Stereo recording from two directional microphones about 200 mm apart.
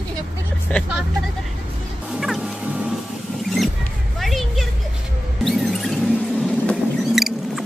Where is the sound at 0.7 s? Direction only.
5° left (ahead or behind).